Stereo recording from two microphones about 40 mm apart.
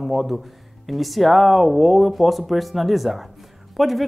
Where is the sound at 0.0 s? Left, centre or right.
Centre.